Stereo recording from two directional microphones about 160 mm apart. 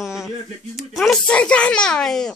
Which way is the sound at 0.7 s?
Centre (ahead or behind).